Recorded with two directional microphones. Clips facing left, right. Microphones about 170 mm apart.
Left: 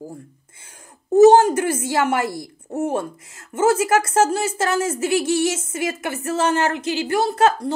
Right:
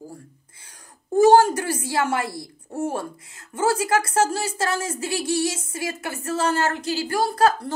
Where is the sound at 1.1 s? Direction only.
20° left (ahead or behind).